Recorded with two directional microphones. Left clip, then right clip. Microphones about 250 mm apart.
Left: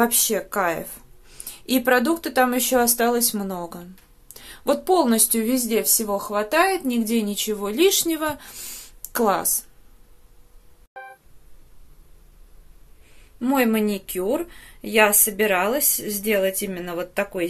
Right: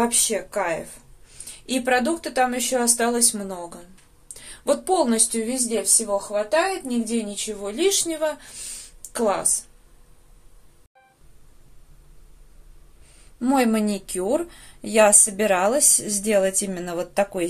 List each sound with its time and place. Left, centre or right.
0.0 s speech: left
13.4 s speech: centre